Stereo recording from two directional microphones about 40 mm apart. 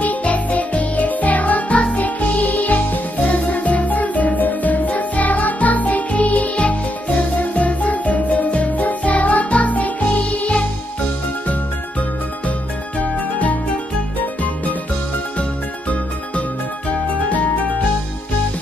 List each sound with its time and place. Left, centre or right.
0.0 s music: left
13.0 s music: left
16.9 s music: left